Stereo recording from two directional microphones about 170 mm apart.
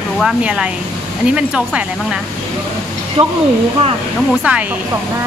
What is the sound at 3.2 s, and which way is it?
Speech, 30° right (ahead or behind).